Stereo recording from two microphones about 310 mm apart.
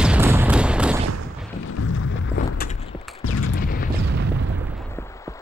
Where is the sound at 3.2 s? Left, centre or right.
Left.